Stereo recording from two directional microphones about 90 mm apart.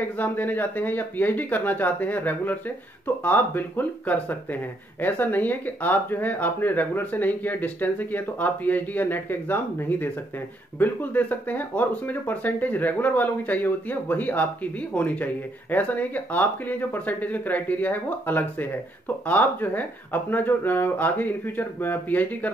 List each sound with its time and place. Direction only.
0.2 s speech: 20° left (ahead or behind)